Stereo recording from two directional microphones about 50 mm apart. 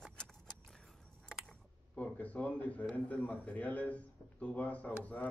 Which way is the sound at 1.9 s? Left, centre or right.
Left.